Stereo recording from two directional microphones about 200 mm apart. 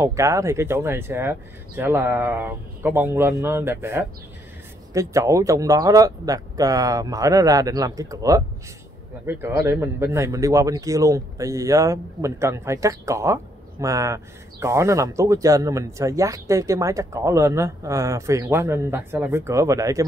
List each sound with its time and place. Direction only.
0.0 s speech: 15° right (ahead or behind)